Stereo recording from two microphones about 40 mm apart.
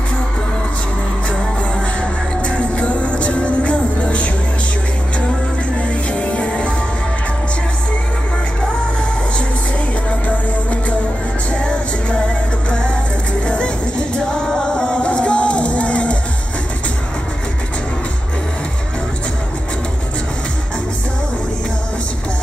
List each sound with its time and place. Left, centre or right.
2.0 s music: left
5.8 s music: left
10.2 s music: left
11.5 s music: left